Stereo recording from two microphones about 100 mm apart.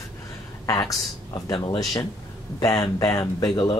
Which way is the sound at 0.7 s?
35° left (ahead or behind).